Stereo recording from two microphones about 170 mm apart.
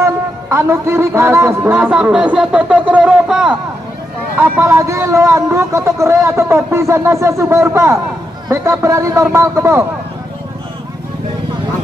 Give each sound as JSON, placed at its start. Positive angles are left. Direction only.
{"t": 0.0, "sound": "a man's voice", "side_deg": -15}
{"t": 4.4, "sound": "speech", "side_deg": -15}